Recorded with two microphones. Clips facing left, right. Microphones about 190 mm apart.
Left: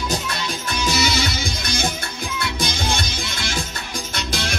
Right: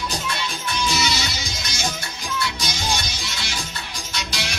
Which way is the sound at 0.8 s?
55° left (ahead or behind).